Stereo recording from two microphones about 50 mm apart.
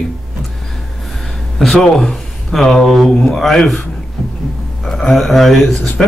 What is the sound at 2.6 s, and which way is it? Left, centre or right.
Speech, centre.